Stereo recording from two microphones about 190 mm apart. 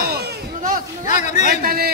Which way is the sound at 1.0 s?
40° left (ahead or behind).